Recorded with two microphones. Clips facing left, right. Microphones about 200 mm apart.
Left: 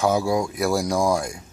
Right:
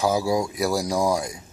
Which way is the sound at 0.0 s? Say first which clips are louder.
Left 1 dB; 5° right (ahead or behind).